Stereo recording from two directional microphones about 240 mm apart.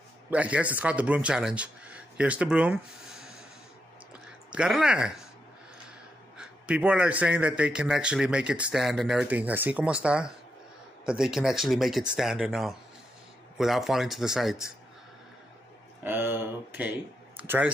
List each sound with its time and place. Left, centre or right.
0.3 s a man's voice: centre
4.5 s a man's voice: centre
6.3 s a man's voice: centre
16.0 s speech: centre